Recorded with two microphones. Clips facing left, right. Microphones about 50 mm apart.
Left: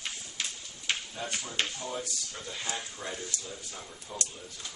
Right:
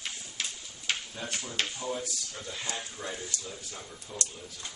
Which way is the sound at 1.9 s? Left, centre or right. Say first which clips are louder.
Right 2 dB; centre.